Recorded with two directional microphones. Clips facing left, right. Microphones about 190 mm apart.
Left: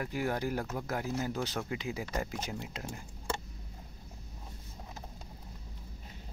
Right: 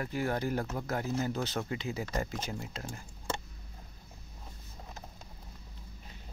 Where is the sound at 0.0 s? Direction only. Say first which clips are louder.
Right 1 dB; 10° left (ahead or behind).